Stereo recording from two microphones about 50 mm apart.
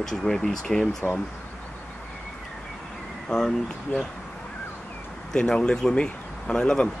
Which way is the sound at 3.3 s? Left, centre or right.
Centre.